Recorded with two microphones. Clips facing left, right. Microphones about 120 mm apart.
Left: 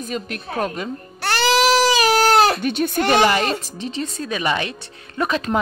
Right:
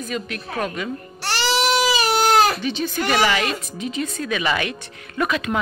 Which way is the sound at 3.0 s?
30° left (ahead or behind).